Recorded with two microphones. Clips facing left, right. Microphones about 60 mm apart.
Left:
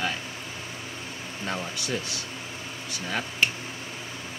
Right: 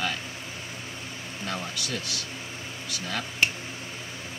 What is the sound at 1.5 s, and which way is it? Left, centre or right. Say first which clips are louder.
Speech: left 2 dB; left.